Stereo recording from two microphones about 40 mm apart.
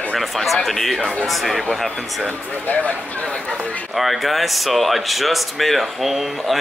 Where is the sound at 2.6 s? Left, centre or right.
Left.